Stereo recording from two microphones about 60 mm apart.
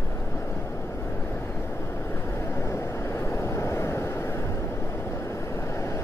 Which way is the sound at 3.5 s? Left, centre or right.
Left.